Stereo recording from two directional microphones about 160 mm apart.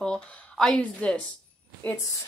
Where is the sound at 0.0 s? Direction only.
5° left (ahead or behind).